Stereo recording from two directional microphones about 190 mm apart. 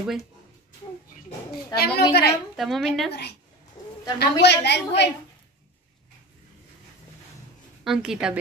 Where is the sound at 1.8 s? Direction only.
60° left (ahead or behind).